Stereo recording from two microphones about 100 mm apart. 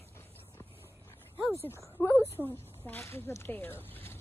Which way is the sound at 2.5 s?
20° left (ahead or behind).